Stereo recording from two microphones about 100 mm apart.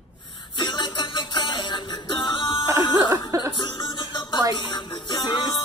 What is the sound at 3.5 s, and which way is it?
Music, 50° left (ahead or behind).